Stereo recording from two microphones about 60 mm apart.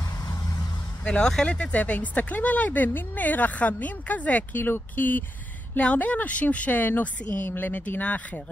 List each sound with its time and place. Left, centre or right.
1.0 s speech: centre; by 5.2 s left
5.8 s speech: left